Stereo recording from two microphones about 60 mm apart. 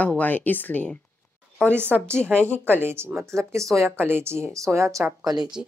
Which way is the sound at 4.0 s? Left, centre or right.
Right.